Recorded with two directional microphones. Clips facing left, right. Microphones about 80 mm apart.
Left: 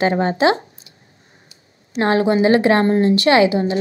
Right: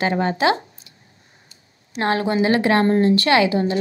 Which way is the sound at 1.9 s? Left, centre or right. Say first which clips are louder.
Left 4 dB; left.